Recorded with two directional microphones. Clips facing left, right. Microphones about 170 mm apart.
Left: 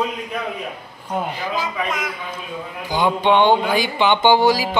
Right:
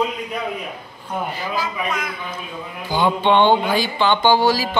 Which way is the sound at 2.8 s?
15° left (ahead or behind).